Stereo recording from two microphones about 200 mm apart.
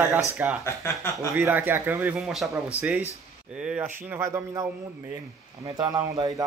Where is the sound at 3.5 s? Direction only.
5° right (ahead or behind).